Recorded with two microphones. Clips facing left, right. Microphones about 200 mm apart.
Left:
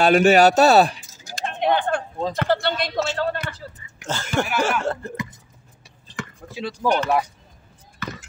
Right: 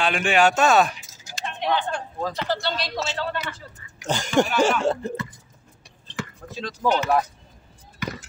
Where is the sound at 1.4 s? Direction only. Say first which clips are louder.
Left 4 dB; 50° left (ahead or behind).